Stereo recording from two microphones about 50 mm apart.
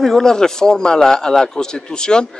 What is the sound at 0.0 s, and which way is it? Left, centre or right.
A man's voice, centre.